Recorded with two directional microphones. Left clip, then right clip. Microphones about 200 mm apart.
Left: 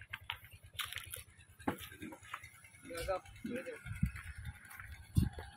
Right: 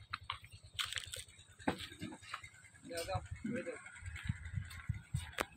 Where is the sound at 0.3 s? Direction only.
10° left (ahead or behind).